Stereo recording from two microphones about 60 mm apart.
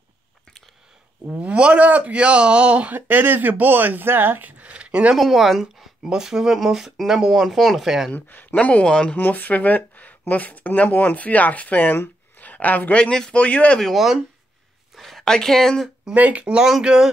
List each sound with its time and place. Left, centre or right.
1.4 s speech: right
3.1 s speech: right; by 5.1 s centre
5.1 s speech: centre
8.1 s speech: left; by 9.1 s centre
9.1 s speech: left
13.0 s speech: centre
13.7 s speech: centre
16.1 s speech: right
16.5 s speech: centre